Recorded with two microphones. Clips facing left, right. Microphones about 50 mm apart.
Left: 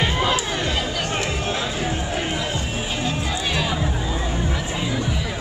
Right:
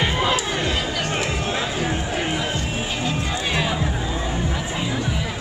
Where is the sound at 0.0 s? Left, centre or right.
Centre.